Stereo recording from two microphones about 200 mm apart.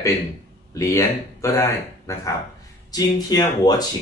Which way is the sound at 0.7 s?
15° left (ahead or behind).